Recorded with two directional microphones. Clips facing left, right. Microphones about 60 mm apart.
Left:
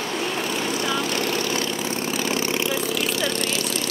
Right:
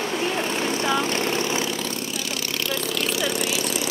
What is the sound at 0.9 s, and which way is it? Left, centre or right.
Vehicle, right.